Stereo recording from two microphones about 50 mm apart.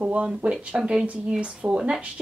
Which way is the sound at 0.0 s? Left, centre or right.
Right.